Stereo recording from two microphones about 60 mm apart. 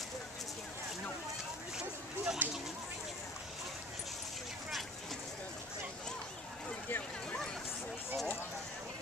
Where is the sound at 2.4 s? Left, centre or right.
Right.